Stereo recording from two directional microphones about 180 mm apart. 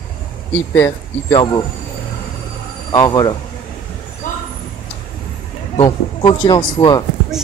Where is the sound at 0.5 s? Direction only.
15° left (ahead or behind).